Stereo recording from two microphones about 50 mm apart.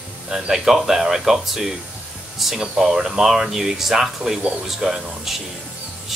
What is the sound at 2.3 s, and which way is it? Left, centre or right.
Air conditioning, centre.